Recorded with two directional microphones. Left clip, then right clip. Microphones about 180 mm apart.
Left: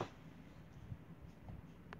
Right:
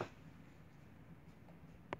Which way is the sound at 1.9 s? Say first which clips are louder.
Right 9 dB; 50° right (ahead or behind).